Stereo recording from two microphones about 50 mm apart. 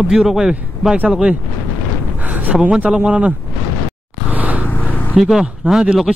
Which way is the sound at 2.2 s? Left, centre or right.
Right.